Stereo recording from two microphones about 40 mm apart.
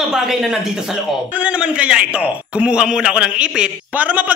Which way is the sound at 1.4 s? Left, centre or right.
Right.